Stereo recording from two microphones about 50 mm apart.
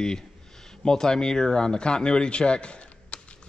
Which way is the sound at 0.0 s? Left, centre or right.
Centre.